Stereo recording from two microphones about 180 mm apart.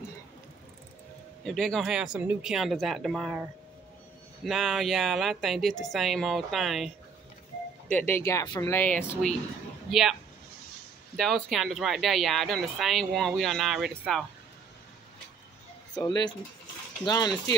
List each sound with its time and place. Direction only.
1.4 s speech: centre (ahead or behind)
4.5 s speech: centre (ahead or behind)
7.9 s speech: 10° left (ahead or behind)
9.8 s speech: centre (ahead or behind)
11.1 s speech: centre (ahead or behind)
15.9 s speech: 20° left (ahead or behind)